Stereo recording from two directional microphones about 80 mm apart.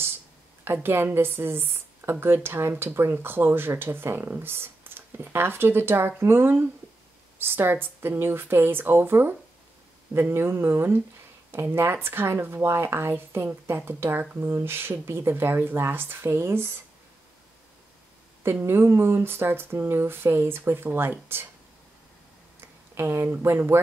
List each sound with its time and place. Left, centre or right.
0.8 s a woman's voice: right
18.4 s a woman's voice: right
22.9 s speech: right